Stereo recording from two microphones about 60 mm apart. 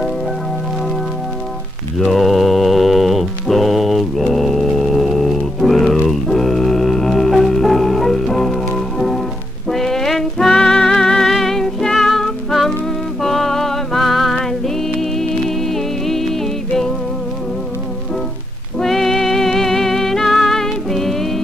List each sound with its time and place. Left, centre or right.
2.0 s mantra: centre
4.3 s music: centre
18.8 s music: centre